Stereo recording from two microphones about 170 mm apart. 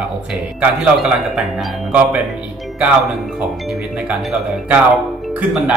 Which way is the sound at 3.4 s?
5° right (ahead or behind).